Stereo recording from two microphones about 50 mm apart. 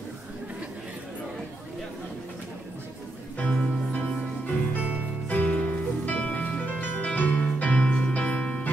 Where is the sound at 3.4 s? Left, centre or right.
Left.